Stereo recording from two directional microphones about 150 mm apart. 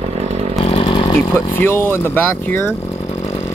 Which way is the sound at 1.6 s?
15° left (ahead or behind).